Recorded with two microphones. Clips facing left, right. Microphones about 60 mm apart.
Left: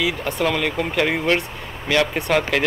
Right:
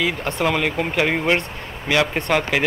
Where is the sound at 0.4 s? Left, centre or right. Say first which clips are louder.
Right 1 dB; centre.